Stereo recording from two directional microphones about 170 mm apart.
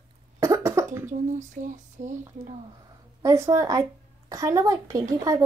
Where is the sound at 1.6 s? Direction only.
45° right (ahead or behind).